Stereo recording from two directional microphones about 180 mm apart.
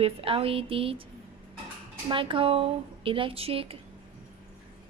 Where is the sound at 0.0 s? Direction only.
30° right (ahead or behind).